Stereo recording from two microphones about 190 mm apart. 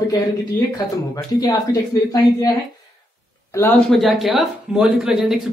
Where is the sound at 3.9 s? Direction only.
Centre (ahead or behind).